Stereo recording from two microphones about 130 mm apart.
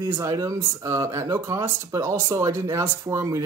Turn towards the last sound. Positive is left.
turn(degrees=-25)  # may be behind; listen again after turning